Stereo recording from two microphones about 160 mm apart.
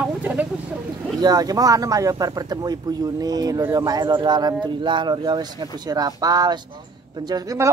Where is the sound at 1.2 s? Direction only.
25° right (ahead or behind).